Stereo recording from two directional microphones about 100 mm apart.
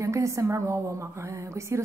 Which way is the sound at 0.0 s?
30° right (ahead or behind).